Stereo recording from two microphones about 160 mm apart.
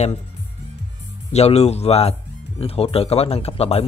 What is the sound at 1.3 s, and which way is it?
A man's voice, 40° left (ahead or behind).